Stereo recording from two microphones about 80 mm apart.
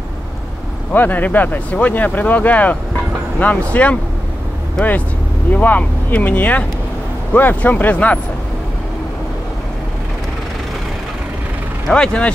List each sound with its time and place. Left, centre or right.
0.9 s speech: left
5.5 s speech: centre
11.9 s speech: centre